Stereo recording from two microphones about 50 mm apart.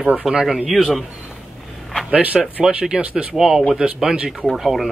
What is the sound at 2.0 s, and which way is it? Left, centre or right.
Speech, right.